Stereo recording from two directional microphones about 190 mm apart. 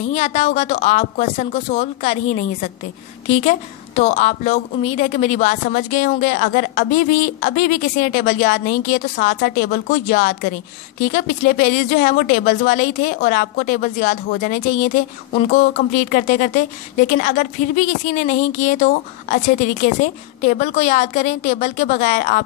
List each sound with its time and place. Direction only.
0.0 s a woman's voice: 35° left (ahead or behind)